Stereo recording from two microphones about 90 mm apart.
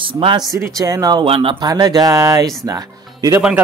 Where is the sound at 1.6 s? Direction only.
45° right (ahead or behind).